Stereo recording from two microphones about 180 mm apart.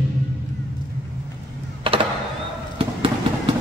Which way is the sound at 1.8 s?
30° right (ahead or behind).